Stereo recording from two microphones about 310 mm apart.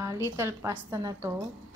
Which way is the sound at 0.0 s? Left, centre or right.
Centre.